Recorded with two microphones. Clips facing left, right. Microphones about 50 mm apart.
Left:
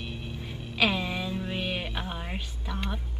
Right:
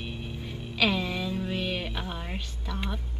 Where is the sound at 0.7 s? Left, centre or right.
Centre.